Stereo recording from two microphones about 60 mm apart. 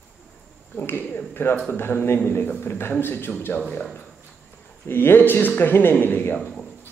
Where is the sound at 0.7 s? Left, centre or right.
Left.